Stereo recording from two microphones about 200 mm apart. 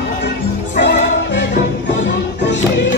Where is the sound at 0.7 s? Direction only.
55° left (ahead or behind).